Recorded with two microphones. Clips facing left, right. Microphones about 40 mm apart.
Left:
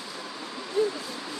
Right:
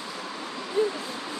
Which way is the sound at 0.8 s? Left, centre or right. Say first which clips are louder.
Right 1 dB; right.